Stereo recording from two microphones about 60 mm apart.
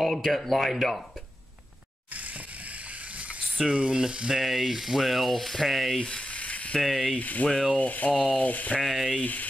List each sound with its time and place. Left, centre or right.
0.0 s rub: centre
3.6 s frying: centre
4.4 s rub: centre; by 6.8 s left
6.8 s rub: centre
7.2 s sanding: left
7.4 s rub: centre
7.7 s sanding: left
8.8 s rub: centre
9.2 s sanding: left